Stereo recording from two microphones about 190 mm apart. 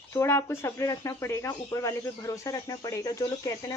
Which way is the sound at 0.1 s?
15° left (ahead or behind).